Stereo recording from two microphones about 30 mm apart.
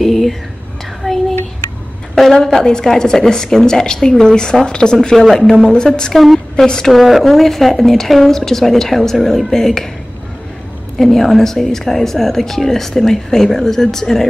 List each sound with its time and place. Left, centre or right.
0.0 s whispering: centre
1.0 s child singing: centre
2.4 s a woman's voice: centre
5.1 s speech: centre
5.7 s a woman's voice: left
6.1 s speech: centre
6.5 s a woman's voice: left
6.9 s speech: centre
11.0 s speech: centre